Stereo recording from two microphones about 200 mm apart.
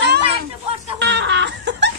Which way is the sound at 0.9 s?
60° right (ahead or behind).